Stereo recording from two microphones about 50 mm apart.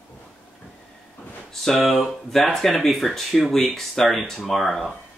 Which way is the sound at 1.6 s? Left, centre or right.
Centre.